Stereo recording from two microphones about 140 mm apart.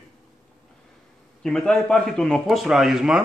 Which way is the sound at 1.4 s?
5° left (ahead or behind).